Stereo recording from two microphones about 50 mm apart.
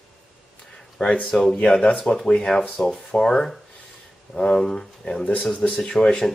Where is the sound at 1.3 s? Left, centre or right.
Centre.